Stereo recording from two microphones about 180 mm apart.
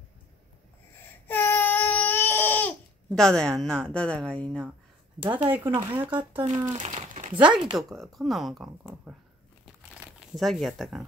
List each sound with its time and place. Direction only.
1.2 s baby cry: 10° left (ahead or behind)
3.1 s a woman's voice: 5° left (ahead or behind)
5.5 s speech: 10° right (ahead or behind)
6.4 s speech: 20° right (ahead or behind)
7.3 s a woman's voice: 5° right (ahead or behind)
10.2 s a woman's voice: centre (ahead or behind)